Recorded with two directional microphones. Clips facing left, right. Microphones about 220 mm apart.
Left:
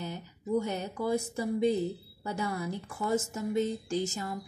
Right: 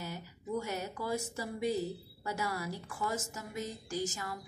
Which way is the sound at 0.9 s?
20° left (ahead or behind).